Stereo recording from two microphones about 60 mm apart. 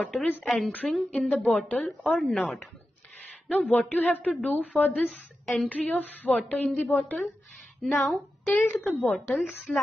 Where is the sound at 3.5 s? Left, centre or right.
Left.